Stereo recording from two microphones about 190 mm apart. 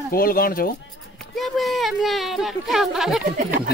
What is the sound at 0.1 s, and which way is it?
Speech, 50° left (ahead or behind).